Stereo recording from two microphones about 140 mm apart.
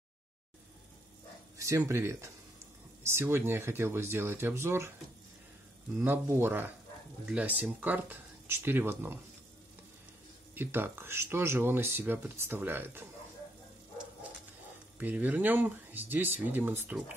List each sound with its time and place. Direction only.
1.6 s speech: 20° right (ahead or behind)
5.9 s speech: 15° right (ahead or behind)
10.5 s speech: 15° right (ahead or behind)
15.0 s speech: 10° right (ahead or behind)